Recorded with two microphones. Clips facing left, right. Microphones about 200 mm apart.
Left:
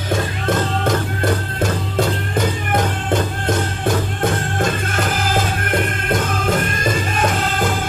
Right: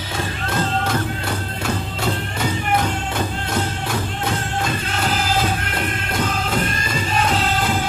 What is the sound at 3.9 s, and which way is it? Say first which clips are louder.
Music: left 5 dB; 50° left (ahead or behind).